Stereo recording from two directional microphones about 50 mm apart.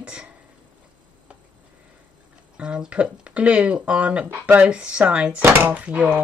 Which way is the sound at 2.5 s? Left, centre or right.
Centre.